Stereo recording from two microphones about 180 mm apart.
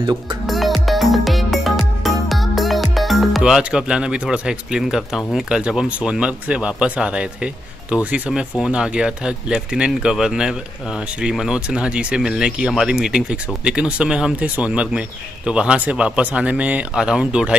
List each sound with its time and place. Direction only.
0.0 s speech: 25° right (ahead or behind)
0.5 s music: centre (ahead or behind)
11.1 s a man's voice: 5° right (ahead or behind)